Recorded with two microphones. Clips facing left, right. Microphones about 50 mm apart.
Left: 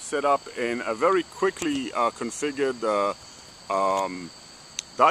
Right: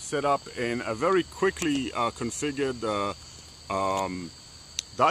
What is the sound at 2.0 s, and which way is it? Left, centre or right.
Speech, centre.